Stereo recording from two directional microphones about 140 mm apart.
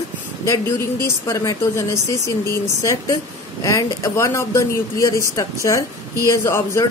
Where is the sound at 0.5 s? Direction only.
20° left (ahead or behind).